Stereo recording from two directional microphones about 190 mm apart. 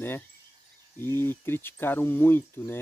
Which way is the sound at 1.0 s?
10° left (ahead or behind).